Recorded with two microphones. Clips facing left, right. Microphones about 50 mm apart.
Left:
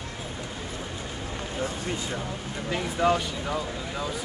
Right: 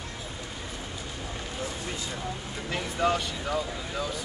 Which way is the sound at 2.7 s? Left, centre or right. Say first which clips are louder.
Left 3 dB; centre.